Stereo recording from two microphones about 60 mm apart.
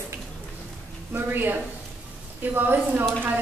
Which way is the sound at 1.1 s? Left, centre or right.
Right.